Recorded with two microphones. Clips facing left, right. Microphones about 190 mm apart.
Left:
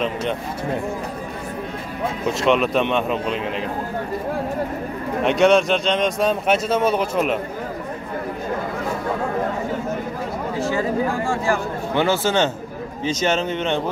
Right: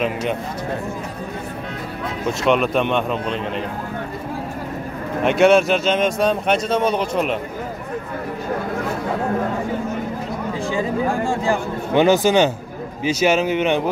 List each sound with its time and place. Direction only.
2.4 s a man's voice: centre (ahead or behind)
5.2 s a man's voice: 5° right (ahead or behind)
10.6 s speech: 15° right (ahead or behind)